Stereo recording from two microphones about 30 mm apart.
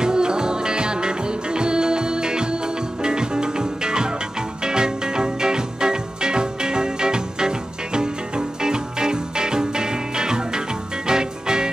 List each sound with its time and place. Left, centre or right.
0.0 s music: right